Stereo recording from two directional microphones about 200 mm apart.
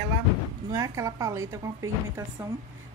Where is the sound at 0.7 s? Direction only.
15° right (ahead or behind).